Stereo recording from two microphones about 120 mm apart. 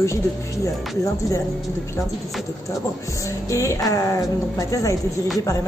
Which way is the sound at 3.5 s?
25° left (ahead or behind).